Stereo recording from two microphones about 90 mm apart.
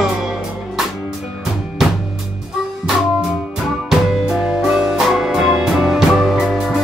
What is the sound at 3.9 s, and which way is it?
Music, 5° right (ahead or behind).